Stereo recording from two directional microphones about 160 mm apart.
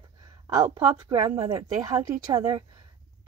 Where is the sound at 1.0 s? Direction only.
25° right (ahead or behind).